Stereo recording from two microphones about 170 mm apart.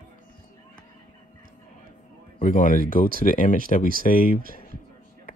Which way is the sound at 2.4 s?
50° left (ahead or behind).